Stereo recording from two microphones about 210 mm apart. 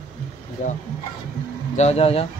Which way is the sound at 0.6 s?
35° left (ahead or behind).